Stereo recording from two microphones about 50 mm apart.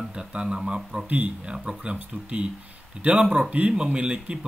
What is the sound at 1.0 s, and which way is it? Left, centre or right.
Speech, right.